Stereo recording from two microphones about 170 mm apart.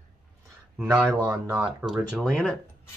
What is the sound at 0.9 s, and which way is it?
Speech, 15° right (ahead or behind).